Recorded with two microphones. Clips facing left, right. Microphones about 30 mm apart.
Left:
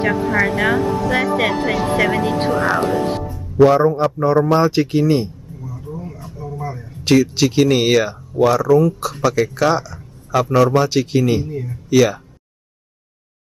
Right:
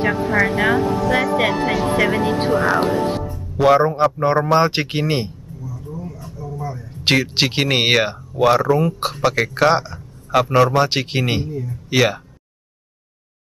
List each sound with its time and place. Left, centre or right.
0.0 s speech: centre
3.6 s speech: right
5.6 s vehicle: left
5.9 s a sound: left
7.1 s a man's voice: right